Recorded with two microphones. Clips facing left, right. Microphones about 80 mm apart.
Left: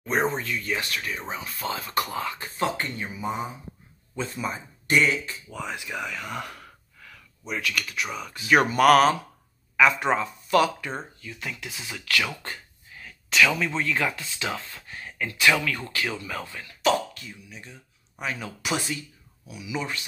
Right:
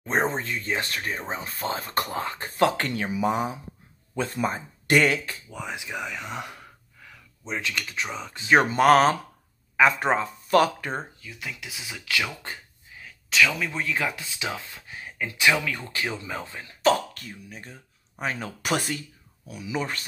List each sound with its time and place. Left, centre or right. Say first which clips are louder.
0.0 s speech: even; right
2.5 s speech: right 6 dB; right
4.1 s speech: right 4 dB; right
5.5 s speech: left 1 dB; centre; by 11.1 s right
11.1 s speech: left 1 dB; centre; by 16.9 s right
16.9 s speech: even; right